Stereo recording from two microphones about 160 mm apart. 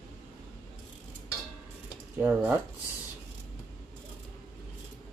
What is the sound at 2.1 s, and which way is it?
Speech, 10° right (ahead or behind).